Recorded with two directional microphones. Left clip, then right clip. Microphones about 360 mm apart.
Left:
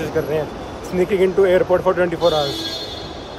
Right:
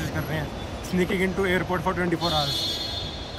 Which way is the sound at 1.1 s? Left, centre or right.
Left.